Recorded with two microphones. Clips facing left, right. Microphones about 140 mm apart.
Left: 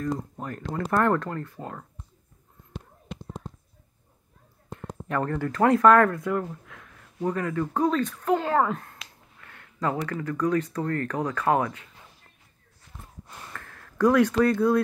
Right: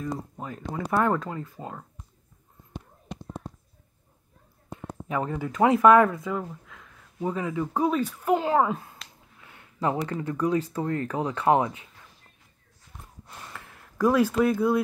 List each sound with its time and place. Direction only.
0.0 s speech: 5° right (ahead or behind)
4.7 s speech: 5° right (ahead or behind)
9.4 s a sound: 15° right (ahead or behind)
9.8 s speech: 25° right (ahead or behind)
10.4 s speech: 10° right (ahead or behind)
11.3 s speech: 20° right (ahead or behind)
13.5 s a sound: 10° right (ahead or behind)